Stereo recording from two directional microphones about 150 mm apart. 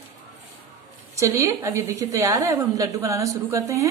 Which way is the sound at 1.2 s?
20° right (ahead or behind).